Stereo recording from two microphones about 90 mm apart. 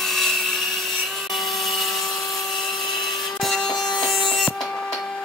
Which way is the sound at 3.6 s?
50° left (ahead or behind).